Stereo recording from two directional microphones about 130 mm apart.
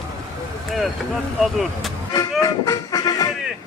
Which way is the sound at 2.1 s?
30° left (ahead or behind).